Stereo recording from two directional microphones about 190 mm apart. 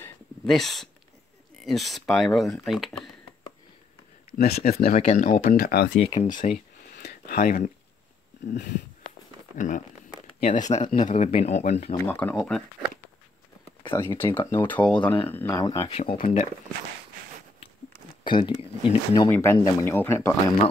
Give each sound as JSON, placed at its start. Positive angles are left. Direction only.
{"t": 0.5, "sound": "speech", "side_deg": 0}
{"t": 4.4, "sound": "speech", "side_deg": 55}
{"t": 4.9, "sound": "speech", "side_deg": 35}
{"t": 6.0, "sound": "speech", "side_deg": 25}
{"t": 6.4, "sound": "a sound", "side_deg": 55}
{"t": 8.5, "sound": "speech", "side_deg": 60}
{"t": 9.6, "sound": "speech", "side_deg": 40}
{"t": 12.0, "sound": "speech", "side_deg": 10}
{"t": 14.0, "sound": "speech", "side_deg": 10}
{"t": 15.9, "sound": "speech", "side_deg": 30}
{"t": 18.2, "sound": "a sound", "side_deg": 25}
{"t": 18.6, "sound": "speech", "side_deg": 25}
{"t": 19.3, "sound": "speech", "side_deg": 10}